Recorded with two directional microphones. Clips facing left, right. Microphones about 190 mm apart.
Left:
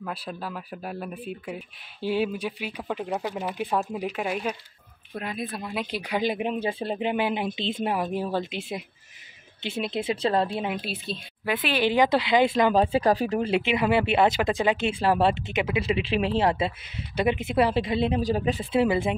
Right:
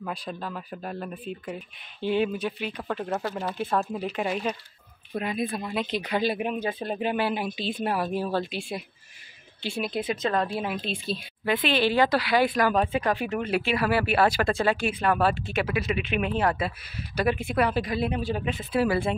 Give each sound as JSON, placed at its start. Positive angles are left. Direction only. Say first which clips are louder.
{"t": 0.0, "sound": "speech", "louder": "even", "side_deg": 5}
{"t": 10.8, "sound": "speech", "louder": "right 2 dB", "side_deg": 5}
{"t": 13.6, "sound": "speech", "louder": "left 1 dB", "side_deg": 20}
{"t": 18.2, "sound": "speech", "louder": "left 4 dB", "side_deg": 35}